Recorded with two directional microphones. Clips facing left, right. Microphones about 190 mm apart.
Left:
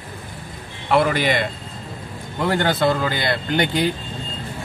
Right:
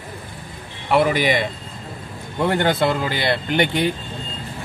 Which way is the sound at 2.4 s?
20° right (ahead or behind).